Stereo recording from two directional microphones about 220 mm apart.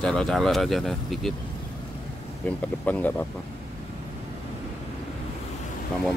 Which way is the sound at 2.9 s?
5° left (ahead or behind).